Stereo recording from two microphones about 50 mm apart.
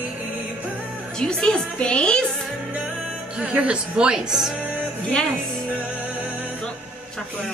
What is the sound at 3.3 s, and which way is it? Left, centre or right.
Speech, right.